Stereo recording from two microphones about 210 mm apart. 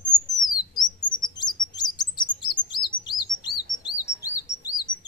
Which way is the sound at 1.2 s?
20° left (ahead or behind).